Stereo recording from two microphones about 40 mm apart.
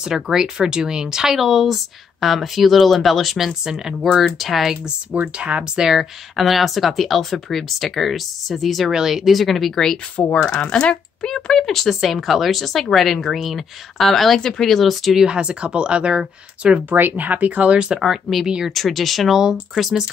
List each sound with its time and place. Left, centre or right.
0.0 s speech: centre
5.4 s speech: right
5.8 s speech: centre
8.9 s speech: centre
10.1 s speech: left; by 11.9 s centre
11.9 s speech: centre
15.2 s speech: right
17.2 s speech: right
17.7 s speech: right
18.0 s speech: centre